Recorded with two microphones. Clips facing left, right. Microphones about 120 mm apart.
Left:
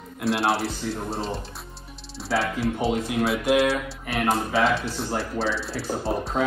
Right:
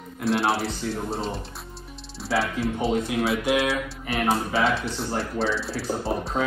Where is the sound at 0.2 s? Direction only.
Centre (ahead or behind).